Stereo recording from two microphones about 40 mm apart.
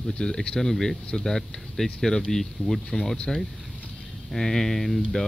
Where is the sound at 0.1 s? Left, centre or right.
Left.